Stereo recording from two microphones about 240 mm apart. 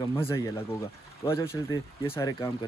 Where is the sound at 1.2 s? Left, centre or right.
Centre.